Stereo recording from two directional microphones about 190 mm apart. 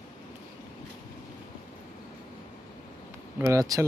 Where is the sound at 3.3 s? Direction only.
15° right (ahead or behind).